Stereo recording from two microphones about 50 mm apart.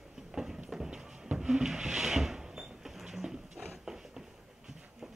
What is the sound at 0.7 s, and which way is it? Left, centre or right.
Music, centre.